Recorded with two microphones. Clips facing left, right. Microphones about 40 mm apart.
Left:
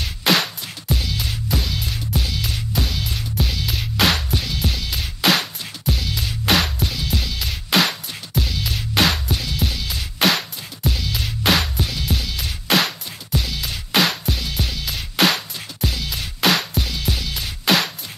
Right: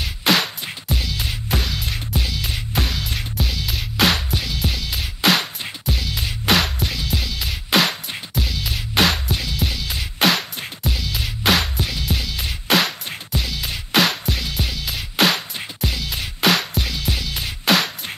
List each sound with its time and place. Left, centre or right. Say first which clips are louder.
0.0 s music: even; centre
1.5 s music: right 1 dB; right
2.1 s music: even; centre